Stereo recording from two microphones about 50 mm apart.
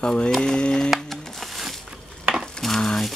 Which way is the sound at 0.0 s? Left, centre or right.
Centre.